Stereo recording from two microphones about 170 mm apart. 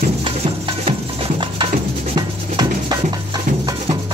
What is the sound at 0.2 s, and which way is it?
Music, 30° right (ahead or behind).